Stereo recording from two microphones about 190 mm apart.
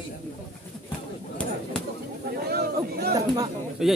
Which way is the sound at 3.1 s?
20° right (ahead or behind).